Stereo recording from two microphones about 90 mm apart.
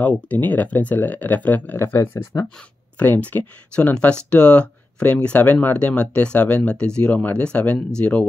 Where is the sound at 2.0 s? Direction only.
40° left (ahead or behind).